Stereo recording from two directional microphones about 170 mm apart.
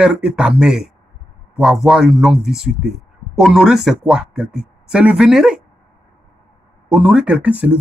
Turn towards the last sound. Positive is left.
turn(degrees=-10)  # may be behind; listen again after turning